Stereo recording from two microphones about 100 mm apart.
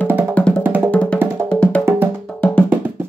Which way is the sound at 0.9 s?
15° left (ahead or behind).